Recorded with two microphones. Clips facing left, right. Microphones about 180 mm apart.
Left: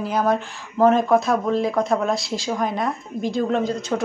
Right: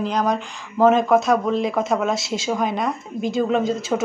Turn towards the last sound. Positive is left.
turn(degrees=-5)  # may be behind; listen again after turning